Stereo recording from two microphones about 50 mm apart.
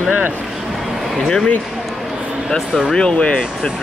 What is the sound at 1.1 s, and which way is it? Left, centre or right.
Speech, centre.